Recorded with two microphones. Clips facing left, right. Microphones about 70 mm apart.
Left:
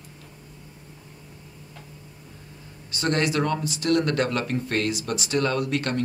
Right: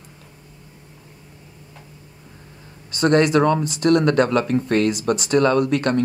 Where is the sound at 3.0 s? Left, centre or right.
Right.